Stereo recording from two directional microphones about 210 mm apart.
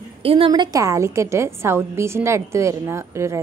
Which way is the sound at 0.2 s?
25° right (ahead or behind).